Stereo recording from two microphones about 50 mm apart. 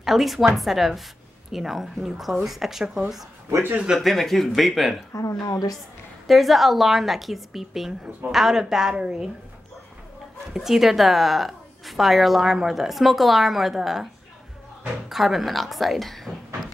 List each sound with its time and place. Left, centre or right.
0.0 s a woman's voice: centre
4.0 s a woman's voice: centre
5.1 s a woman's voice: left
6.2 s a woman's voice: centre
10.5 s a woman's voice: centre
15.0 s a woman's voice: centre